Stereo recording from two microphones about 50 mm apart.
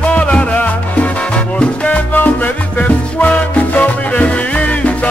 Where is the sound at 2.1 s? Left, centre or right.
Left.